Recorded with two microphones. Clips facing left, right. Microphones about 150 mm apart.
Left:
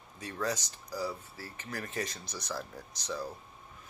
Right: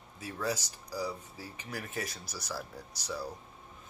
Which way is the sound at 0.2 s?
5° right (ahead or behind).